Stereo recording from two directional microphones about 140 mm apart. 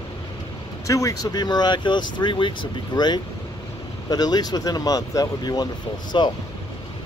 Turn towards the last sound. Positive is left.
turn(degrees=30)  # may be behind; listen again after turning